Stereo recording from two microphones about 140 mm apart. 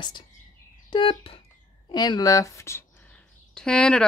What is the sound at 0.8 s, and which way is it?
Speech, 35° left (ahead or behind).